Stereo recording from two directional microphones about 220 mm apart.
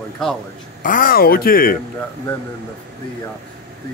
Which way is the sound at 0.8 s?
40° left (ahead or behind).